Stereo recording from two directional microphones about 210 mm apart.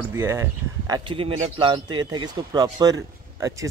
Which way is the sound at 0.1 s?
10° right (ahead or behind).